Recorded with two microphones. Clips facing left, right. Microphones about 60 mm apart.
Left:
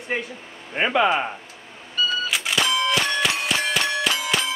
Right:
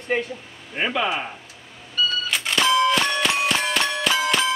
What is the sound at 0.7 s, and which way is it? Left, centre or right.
Speech, left.